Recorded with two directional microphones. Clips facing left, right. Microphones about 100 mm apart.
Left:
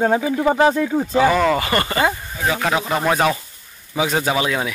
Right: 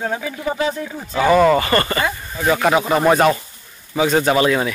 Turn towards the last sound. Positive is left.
turn(degrees=5)  # may be behind; listen again after turning